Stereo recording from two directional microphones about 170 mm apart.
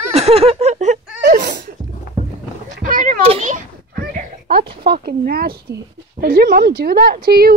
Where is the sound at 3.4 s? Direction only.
55° right (ahead or behind).